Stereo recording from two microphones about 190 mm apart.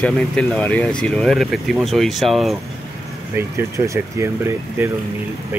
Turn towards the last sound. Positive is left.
turn(degrees=-15)  # may be behind; listen again after turning